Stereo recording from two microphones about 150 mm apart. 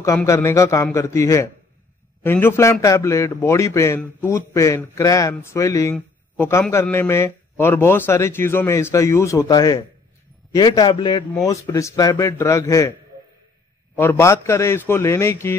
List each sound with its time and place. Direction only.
0.0 s a man's voice: 20° left (ahead or behind)
13.9 s a man's voice: 15° left (ahead or behind)